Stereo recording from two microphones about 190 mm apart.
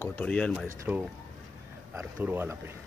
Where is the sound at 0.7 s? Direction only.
10° right (ahead or behind).